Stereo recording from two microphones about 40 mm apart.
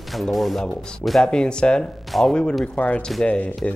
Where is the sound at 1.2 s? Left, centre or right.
Left.